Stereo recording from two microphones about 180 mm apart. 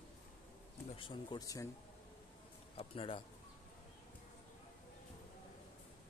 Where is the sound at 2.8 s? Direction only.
30° left (ahead or behind).